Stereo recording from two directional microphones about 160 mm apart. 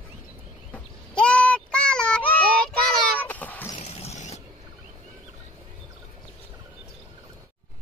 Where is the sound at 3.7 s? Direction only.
40° left (ahead or behind).